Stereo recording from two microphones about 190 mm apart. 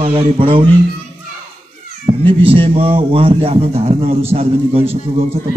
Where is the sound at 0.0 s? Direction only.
30° right (ahead or behind).